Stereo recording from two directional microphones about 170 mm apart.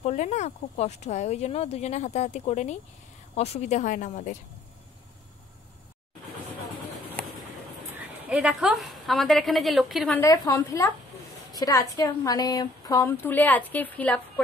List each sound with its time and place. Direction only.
0.0 s a woman's voice: 40° left (ahead or behind)
8.2 s a woman's voice: 5° right (ahead or behind)
10.1 s a woman's voice: 20° left (ahead or behind)